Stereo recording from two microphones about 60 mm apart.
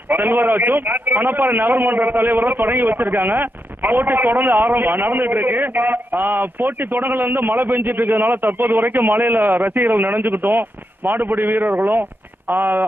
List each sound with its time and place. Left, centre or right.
0.1 s a man's voice: right